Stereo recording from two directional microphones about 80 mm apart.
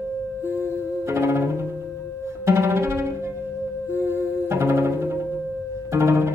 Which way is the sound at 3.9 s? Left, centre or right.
Right.